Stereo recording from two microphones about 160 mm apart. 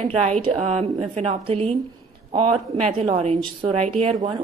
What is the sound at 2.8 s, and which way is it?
Speech, 40° right (ahead or behind).